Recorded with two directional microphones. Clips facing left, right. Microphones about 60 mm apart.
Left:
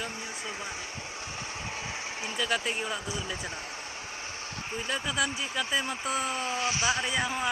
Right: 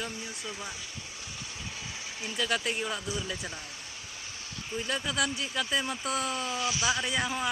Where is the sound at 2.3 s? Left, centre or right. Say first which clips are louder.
Even; centre.